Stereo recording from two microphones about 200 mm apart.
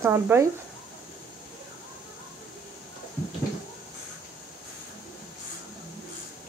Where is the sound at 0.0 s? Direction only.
10° right (ahead or behind).